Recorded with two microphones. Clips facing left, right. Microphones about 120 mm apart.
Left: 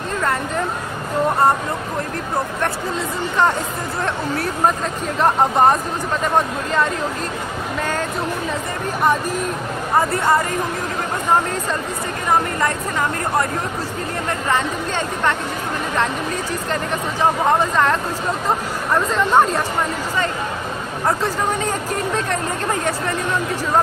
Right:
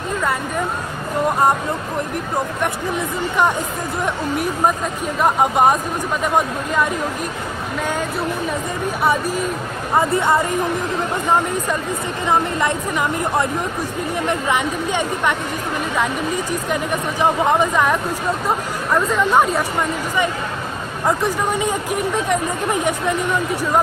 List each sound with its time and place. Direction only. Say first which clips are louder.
2.6 s speech: right 1 dB; 15° right (ahead or behind)
12.3 s speech: even; 20° right (ahead or behind)
14.2 s speech: right 1 dB; 15° right (ahead or behind)
16.7 s speech: right 1 dB; 15° right (ahead or behind)
19.0 s speech: left 1 dB; 5° right (ahead or behind)
21.2 s speech: right 1 dB; 15° right (ahead or behind)